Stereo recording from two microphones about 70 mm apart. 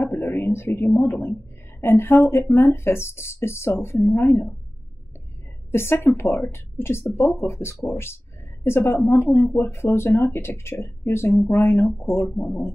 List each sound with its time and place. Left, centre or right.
0.0 s a sound: left
1.8 s speech: left
5.7 s speech: left